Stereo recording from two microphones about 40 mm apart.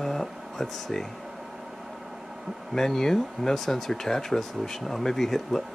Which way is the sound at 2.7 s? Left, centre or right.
Centre.